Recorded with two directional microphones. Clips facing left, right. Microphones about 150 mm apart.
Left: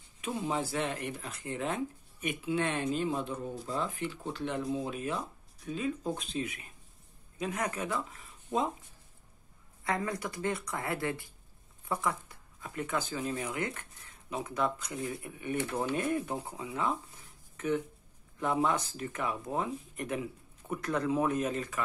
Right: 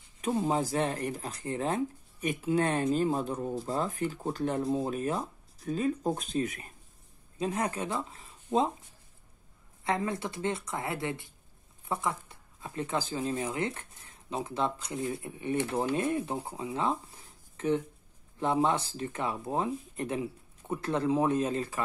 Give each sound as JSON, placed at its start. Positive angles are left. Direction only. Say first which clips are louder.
{"t": 0.2, "sound": "speech", "louder": "right 5 dB", "side_deg": -40}
{"t": 7.3, "sound": "speech", "louder": "right 3 dB", "side_deg": -30}
{"t": 9.8, "sound": "speech", "louder": "right 2 dB", "side_deg": -25}